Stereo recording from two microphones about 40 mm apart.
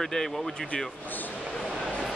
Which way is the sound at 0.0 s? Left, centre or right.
Centre.